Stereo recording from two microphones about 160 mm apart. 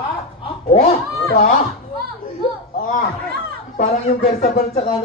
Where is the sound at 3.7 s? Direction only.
40° left (ahead or behind).